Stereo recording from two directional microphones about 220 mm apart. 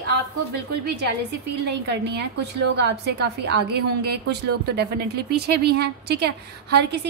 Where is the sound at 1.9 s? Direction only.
50° right (ahead or behind).